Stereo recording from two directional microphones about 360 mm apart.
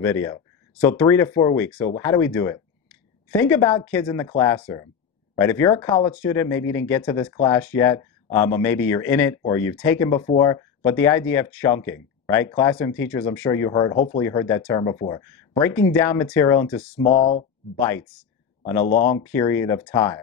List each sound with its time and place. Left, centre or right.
0.0 s a man's voice: centre
17.1 s speech: centre
17.7 s speech: centre
18.9 s speech: left
19.3 s speech: centre